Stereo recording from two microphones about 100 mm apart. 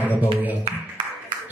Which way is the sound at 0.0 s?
15° right (ahead or behind).